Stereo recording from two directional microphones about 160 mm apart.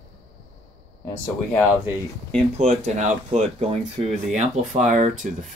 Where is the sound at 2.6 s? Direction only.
50° right (ahead or behind).